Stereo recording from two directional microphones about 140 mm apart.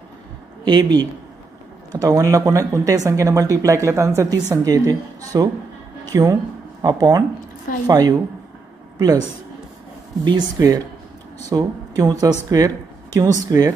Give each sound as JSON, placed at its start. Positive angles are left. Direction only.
{"t": 0.7, "sound": "a woman's voice", "side_deg": -30}
{"t": 10.2, "sound": "speech", "side_deg": -30}